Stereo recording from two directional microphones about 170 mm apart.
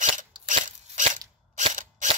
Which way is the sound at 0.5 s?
45° right (ahead or behind).